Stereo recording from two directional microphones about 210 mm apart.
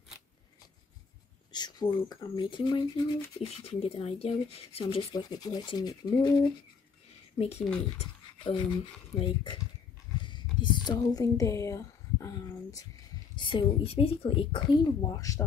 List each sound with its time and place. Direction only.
1.5 s speech: 20° left (ahead or behind)
7.3 s speech: 30° left (ahead or behind)
10.2 s a sound: 20° left (ahead or behind)
13.4 s speech: 25° left (ahead or behind)